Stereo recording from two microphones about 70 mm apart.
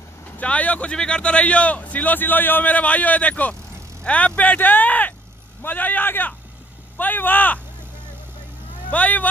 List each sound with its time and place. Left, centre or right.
0.4 s a man's voice: centre
8.9 s a man's voice: left